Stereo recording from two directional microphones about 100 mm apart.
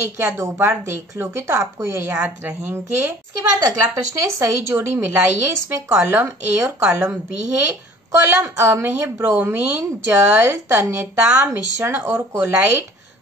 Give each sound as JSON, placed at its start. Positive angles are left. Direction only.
{"t": 0.0, "sound": "a woman's voice", "side_deg": -30}
{"t": 3.5, "sound": "a woman's voice", "side_deg": -35}
{"t": 8.1, "sound": "a woman's voice", "side_deg": -30}
{"t": 12.1, "sound": "a woman's voice", "side_deg": -30}